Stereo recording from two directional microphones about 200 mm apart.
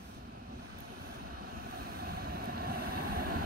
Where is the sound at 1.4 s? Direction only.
50° right (ahead or behind).